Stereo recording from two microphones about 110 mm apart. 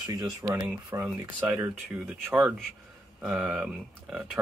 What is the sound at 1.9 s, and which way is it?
Speech, 10° right (ahead or behind).